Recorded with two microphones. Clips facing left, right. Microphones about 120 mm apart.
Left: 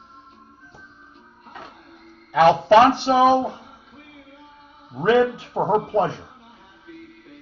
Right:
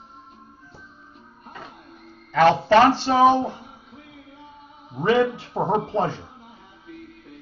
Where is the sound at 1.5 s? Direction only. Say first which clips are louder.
Even; centre (ahead or behind).